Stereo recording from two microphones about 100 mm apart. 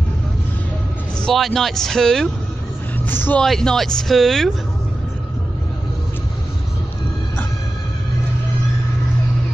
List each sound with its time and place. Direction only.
1.2 s speech: centre (ahead or behind)
3.1 s speech: 20° left (ahead or behind)
3.3 s speech: 5° left (ahead or behind)